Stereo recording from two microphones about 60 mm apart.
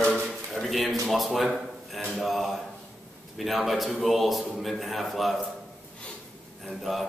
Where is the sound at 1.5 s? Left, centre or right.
Centre.